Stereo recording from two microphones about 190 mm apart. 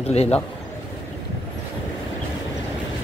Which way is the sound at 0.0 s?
35° left (ahead or behind).